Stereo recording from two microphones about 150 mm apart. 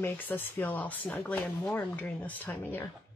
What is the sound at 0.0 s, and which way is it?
Speech, 15° left (ahead or behind).